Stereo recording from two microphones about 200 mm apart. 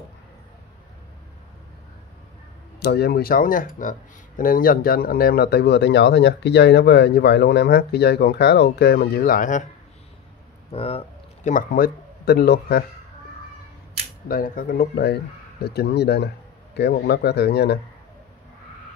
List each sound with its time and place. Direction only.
2.8 s speech: 55° left (ahead or behind); by 9.7 s 40° left (ahead or behind)
10.7 s speech: 30° left (ahead or behind); by 12.8 s 50° left (ahead or behind)
14.2 s speech: 45° left (ahead or behind)